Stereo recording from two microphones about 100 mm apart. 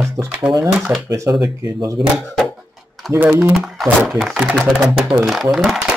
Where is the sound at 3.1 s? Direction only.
20° right (ahead or behind).